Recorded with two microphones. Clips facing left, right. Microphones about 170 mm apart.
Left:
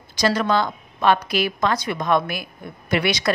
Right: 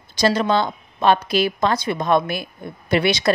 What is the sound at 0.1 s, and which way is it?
A woman's voice, 25° right (ahead or behind).